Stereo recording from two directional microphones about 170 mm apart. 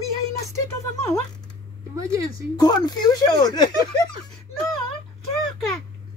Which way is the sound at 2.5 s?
25° left (ahead or behind).